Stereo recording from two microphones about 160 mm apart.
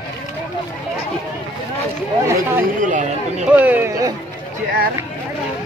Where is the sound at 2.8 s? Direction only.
50° right (ahead or behind).